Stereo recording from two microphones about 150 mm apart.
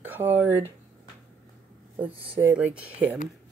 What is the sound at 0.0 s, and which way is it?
Speech, 15° right (ahead or behind).